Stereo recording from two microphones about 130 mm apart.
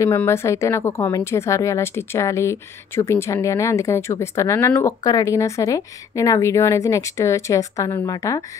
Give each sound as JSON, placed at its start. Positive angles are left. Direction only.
{"t": 0.0, "sound": "a woman's voice", "side_deg": 20}